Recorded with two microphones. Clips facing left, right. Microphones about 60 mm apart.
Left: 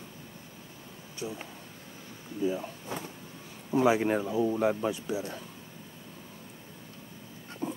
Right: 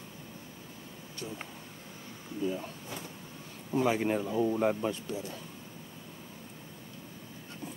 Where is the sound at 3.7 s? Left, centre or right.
Centre.